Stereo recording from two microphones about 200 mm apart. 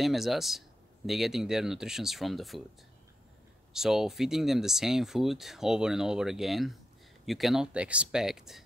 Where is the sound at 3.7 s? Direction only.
Centre (ahead or behind).